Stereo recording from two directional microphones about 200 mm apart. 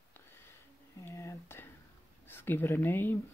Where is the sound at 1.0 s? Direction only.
15° left (ahead or behind).